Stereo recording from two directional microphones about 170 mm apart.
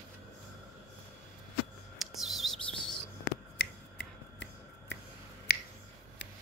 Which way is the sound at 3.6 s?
80° left.